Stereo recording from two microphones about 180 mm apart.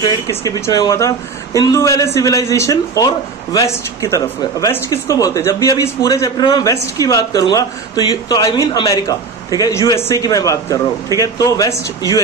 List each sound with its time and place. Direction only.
0.0 s speech: 20° left (ahead or behind)